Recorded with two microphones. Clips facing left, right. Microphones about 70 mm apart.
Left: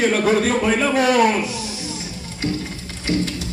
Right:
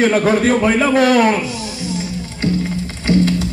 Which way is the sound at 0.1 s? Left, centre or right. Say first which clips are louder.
Right 4 dB; right.